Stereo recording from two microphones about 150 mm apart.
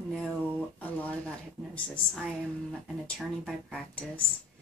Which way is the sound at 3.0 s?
Centre (ahead or behind).